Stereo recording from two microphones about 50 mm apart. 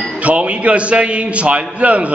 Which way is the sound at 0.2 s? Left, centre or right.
Right.